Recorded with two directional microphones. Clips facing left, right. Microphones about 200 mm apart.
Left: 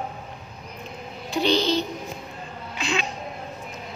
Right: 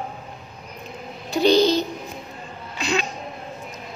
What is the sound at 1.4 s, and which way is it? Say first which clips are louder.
Child singing: right 6 dB; 40° right (ahead or behind).